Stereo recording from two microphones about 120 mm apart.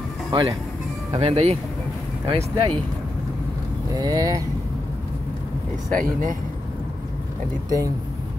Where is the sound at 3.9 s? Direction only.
30° right (ahead or behind).